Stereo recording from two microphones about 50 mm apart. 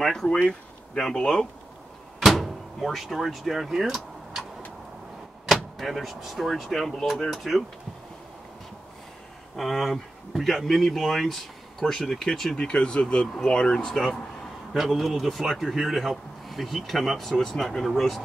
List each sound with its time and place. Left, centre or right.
0.0 s speech: centre
2.1 s door: centre
5.5 s a man's voice: centre
9.6 s a man's voice: centre
12.5 s speech: centre
14.7 s a man's voice: centre